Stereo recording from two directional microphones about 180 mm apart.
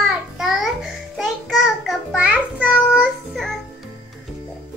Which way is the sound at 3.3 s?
Centre (ahead or behind).